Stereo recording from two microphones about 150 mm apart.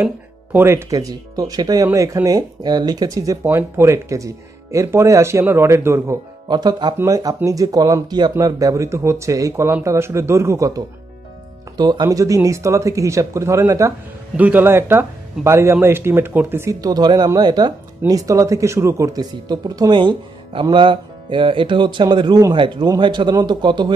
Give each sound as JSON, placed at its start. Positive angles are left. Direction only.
{"t": 0.0, "sound": "speech", "side_deg": -15}